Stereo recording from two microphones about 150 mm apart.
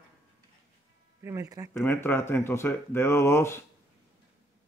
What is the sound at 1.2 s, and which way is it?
Speech, 20° right (ahead or behind).